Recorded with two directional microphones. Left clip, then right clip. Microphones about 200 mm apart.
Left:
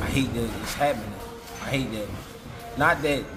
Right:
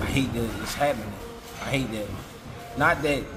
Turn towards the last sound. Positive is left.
turn(degrees=-5)  # may be behind; listen again after turning